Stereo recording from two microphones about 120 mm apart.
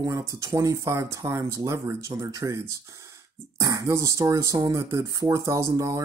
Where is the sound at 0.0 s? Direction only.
30° right (ahead or behind).